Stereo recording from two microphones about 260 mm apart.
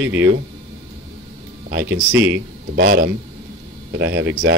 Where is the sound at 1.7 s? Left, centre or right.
Right.